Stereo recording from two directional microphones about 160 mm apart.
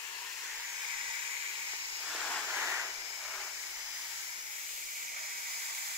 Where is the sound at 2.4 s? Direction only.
5° right (ahead or behind).